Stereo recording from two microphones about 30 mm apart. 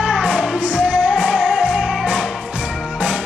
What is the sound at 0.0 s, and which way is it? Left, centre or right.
Music, right.